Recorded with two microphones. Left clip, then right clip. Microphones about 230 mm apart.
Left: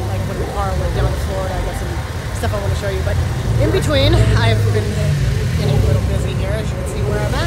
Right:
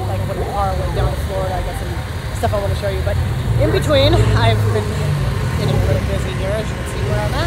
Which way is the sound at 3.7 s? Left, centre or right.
Centre.